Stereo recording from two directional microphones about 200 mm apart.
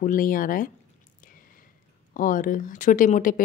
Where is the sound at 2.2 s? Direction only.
45° left (ahead or behind).